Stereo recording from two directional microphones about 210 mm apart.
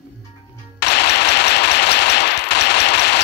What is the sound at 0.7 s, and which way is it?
Machine gun, 55° left (ahead or behind).